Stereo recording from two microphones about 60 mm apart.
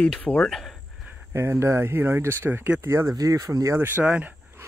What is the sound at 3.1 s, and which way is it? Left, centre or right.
Speech, right.